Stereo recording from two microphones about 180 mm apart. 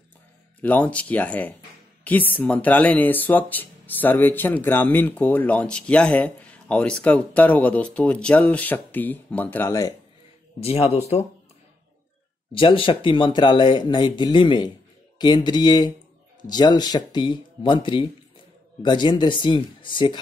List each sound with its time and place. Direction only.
0.6 s speech: 10° left (ahead or behind)
10.6 s speech: 35° left (ahead or behind)
12.5 s speech: 30° left (ahead or behind)